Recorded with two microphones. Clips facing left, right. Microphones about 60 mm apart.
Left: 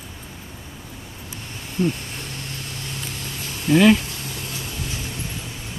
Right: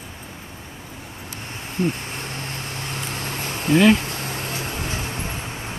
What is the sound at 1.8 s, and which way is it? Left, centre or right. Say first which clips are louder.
Vehicle: left 1 dB; right.